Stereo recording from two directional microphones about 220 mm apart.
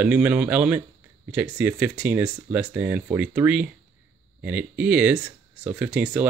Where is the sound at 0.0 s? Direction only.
5° right (ahead or behind).